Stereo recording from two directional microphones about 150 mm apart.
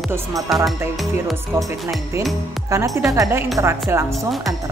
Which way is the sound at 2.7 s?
20° right (ahead or behind).